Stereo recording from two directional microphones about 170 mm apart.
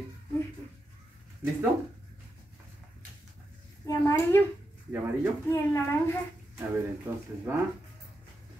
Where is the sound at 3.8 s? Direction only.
15° left (ahead or behind).